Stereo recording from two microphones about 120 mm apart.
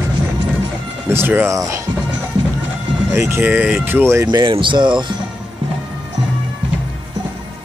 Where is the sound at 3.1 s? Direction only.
20° right (ahead or behind).